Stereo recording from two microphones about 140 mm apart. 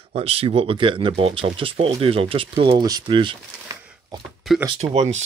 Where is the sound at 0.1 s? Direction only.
45° right (ahead or behind).